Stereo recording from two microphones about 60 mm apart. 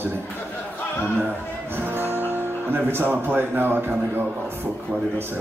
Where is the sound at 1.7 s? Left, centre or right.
Right.